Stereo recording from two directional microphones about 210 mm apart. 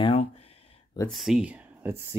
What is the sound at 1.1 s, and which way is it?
Speech, centre (ahead or behind).